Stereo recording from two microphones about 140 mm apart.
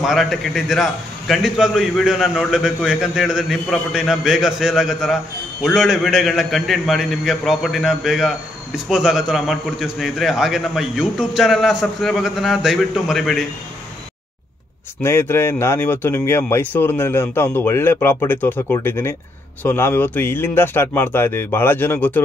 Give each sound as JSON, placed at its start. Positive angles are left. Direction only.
{"t": 0.0, "sound": "a man's voice", "side_deg": 0}
{"t": 15.0, "sound": "speech", "side_deg": 15}